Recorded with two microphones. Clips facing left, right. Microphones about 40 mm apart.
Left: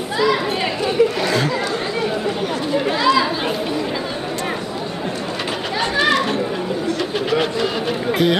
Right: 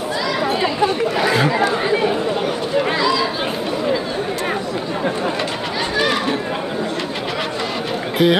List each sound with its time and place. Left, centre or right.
1.2 s chatter: centre
3.0 s chatter: centre
8.2 s speech: centre